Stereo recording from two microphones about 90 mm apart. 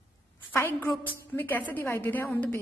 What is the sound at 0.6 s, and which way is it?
A woman's voice, 25° left (ahead or behind).